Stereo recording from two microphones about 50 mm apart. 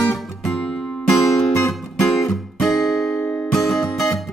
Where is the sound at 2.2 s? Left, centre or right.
Centre.